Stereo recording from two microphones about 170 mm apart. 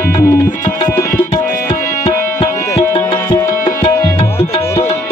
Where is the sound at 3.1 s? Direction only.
20° left (ahead or behind).